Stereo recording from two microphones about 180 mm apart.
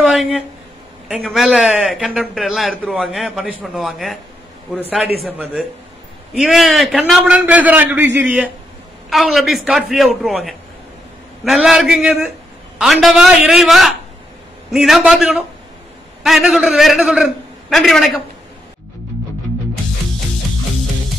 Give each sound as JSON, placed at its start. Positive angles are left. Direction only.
{"t": 0.0, "sound": "a sound", "side_deg": -5}
{"t": 1.0, "sound": "a man's voice", "side_deg": -5}
{"t": 5.2, "sound": "a man's voice", "side_deg": -5}